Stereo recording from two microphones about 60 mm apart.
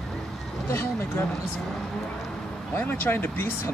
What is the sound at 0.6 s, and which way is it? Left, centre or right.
Speech, left.